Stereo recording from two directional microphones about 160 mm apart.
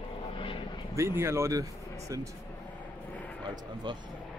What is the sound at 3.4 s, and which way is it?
Speech, 30° right (ahead or behind).